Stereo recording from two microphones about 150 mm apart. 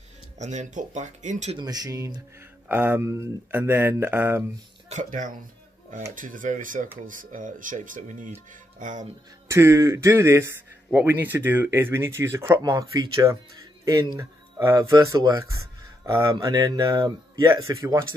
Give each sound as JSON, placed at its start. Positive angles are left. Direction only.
{"t": 0.4, "sound": "speech", "side_deg": -55}
{"t": 1.6, "sound": "speech", "side_deg": -25}
{"t": 2.7, "sound": "speech", "side_deg": -10}
{"t": 4.8, "sound": "speech", "side_deg": -55}
{"t": 9.5, "sound": "speech", "side_deg": -20}